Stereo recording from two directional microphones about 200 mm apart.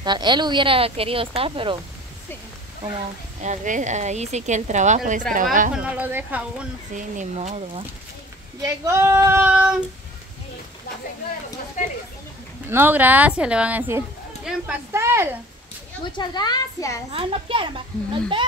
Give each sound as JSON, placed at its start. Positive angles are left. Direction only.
{"t": 0.0, "sound": "speech", "side_deg": -20}
{"t": 3.3, "sound": "speech", "side_deg": -40}
{"t": 5.8, "sound": "speech", "side_deg": -5}
{"t": 7.0, "sound": "speech", "side_deg": -35}
{"t": 8.6, "sound": "speech", "side_deg": -15}
{"t": 11.8, "sound": "speech", "side_deg": 40}
{"t": 12.6, "sound": "speech", "side_deg": -10}
{"t": 16.1, "sound": "a woman's voice", "side_deg": 20}
{"t": 17.1, "sound": "speech", "side_deg": -30}